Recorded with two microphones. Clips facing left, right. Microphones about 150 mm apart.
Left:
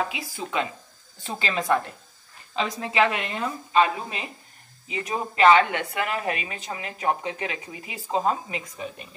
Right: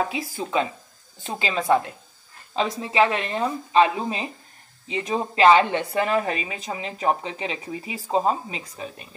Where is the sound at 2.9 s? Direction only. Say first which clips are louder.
Right 2 dB; 30° right (ahead or behind).